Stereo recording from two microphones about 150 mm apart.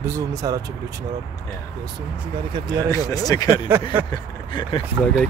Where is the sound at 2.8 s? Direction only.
20° left (ahead or behind).